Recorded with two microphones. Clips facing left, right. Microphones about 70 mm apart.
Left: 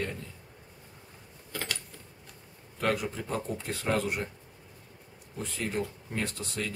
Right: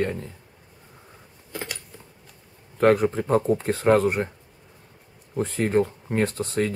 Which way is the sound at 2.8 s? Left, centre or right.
Right.